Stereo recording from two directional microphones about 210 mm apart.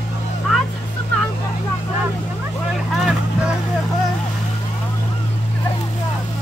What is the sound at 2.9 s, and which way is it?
Boat, centre (ahead or behind).